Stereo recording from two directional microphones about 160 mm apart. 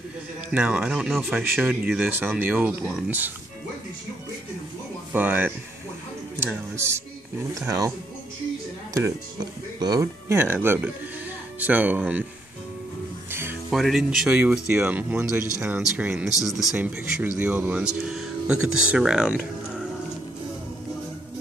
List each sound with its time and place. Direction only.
0.5 s speech: 10° right (ahead or behind)
5.1 s speech: 10° right (ahead or behind)
8.9 s speech: 25° right (ahead or behind)
13.3 s music: 15° right (ahead or behind)
13.7 s speech: centre (ahead or behind)